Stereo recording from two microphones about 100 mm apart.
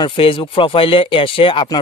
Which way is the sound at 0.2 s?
60° left (ahead or behind).